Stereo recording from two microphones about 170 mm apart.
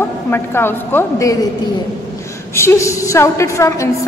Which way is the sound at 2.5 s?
15° left (ahead or behind).